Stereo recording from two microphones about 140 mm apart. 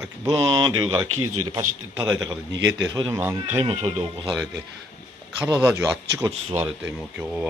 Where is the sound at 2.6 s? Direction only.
25° right (ahead or behind).